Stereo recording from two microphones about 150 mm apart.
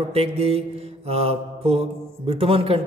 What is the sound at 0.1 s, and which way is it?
Mantra, 40° right (ahead or behind).